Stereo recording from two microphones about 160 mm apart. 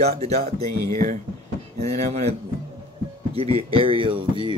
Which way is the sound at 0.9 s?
50° right (ahead or behind).